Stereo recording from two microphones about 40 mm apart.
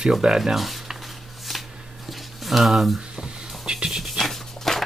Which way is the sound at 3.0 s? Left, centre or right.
Right.